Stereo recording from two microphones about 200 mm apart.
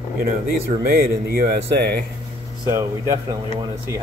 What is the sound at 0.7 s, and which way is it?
Speech, 50° right (ahead or behind).